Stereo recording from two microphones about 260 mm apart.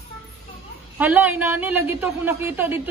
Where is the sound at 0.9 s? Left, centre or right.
Centre.